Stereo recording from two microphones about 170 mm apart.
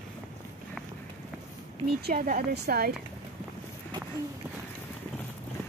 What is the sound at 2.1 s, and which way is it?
Speech, 60° right (ahead or behind).